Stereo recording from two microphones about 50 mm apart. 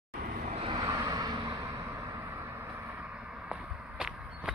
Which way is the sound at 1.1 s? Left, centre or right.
Right.